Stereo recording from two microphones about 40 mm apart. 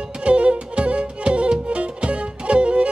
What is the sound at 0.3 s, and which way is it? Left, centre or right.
Music, right.